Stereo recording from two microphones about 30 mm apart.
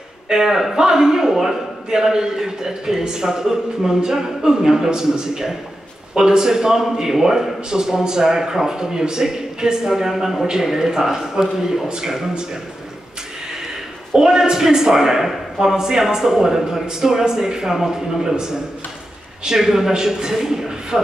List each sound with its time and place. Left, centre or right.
0.3 s a man's voice: centre
14.1 s a man's voice: right
19.4 s a man's voice: centre